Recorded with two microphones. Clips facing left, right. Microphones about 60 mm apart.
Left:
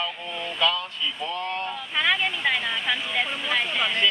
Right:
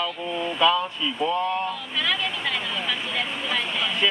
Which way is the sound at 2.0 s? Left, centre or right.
Left.